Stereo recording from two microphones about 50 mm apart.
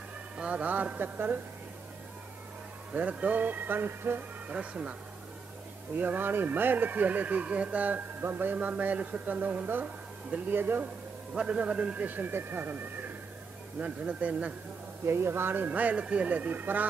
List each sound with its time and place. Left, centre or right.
0.4 s speech: right
2.9 s speech: right
4.5 s a man's voice: right
5.9 s speech: right
8.2 s speech: right
8.5 s speech: right
11.3 s a man's voice: right
12.1 s speech: right
13.7 s a man's voice: right
15.0 s speech: right